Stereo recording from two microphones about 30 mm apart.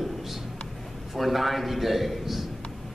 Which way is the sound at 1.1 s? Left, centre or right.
Centre.